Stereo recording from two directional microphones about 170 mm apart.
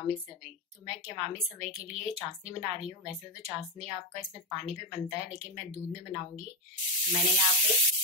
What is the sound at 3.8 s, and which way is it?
A woman's voice, 40° right (ahead or behind).